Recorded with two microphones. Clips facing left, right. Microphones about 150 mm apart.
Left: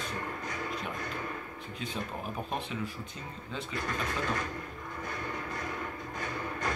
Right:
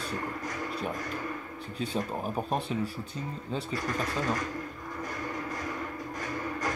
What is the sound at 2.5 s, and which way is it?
Speech, 35° right (ahead or behind).